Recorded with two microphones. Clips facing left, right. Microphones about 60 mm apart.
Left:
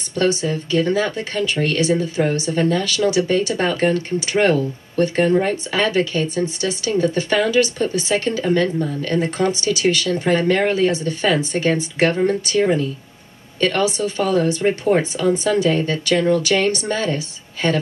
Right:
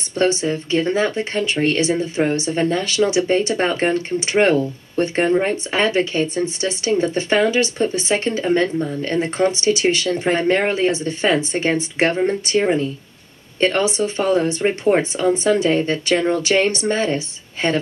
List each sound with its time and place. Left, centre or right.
0.4 s speech: right